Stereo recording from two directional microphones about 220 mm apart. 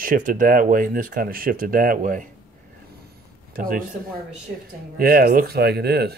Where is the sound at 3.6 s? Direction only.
40° right (ahead or behind).